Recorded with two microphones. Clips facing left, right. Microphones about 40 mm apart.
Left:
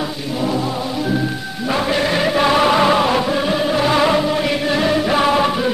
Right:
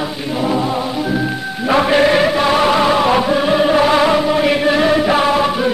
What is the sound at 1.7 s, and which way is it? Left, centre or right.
Music, right.